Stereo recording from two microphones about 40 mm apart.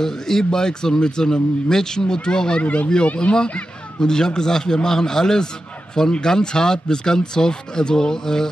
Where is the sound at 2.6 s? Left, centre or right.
Left; by 8.5 s centre.